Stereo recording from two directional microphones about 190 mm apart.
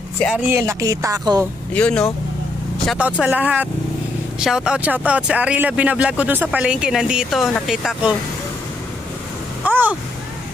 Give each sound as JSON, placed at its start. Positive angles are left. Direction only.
{"t": 0.5, "sound": "speech", "side_deg": -15}
{"t": 1.7, "sound": "speech", "side_deg": 5}
{"t": 2.9, "sound": "speech", "side_deg": -5}
{"t": 9.7, "sound": "a sound", "side_deg": -10}